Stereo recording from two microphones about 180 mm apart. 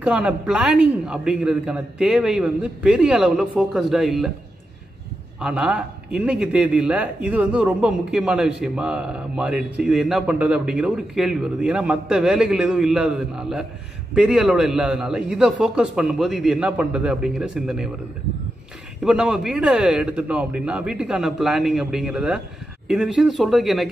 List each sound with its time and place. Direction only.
0.0 s a man's voice: 5° right (ahead or behind)
5.4 s a man's voice: 5° right (ahead or behind)
19.0 s a man's voice: 5° right (ahead or behind)